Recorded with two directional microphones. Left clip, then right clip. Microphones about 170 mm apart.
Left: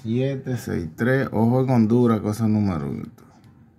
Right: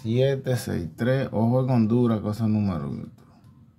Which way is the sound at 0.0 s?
45° right (ahead or behind).